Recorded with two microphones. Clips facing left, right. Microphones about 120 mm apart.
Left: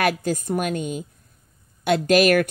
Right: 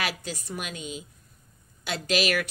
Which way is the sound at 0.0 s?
50° left (ahead or behind).